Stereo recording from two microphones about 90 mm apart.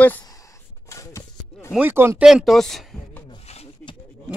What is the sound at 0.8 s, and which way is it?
Chopping, 35° left (ahead or behind).